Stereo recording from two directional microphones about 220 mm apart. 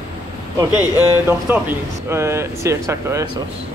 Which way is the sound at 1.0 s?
10° right (ahead or behind).